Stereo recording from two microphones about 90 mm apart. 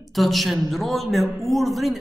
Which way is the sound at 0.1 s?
Centre (ahead or behind).